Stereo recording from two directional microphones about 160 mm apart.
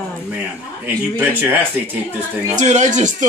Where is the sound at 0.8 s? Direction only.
10° right (ahead or behind).